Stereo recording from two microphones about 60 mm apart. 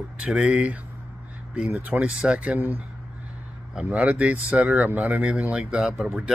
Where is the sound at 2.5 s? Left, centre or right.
Right.